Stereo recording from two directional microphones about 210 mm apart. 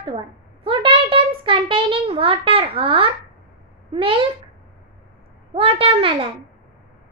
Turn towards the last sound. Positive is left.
turn(degrees=-25)  # may be behind; listen again after turning